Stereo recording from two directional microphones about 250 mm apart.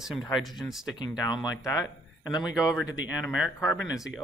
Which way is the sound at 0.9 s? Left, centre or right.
Centre.